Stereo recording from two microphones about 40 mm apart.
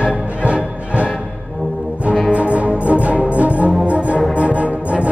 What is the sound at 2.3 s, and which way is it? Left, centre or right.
Music, right.